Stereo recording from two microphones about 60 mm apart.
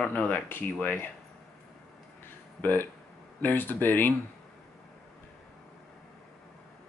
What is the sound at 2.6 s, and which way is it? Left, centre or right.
Speech, left.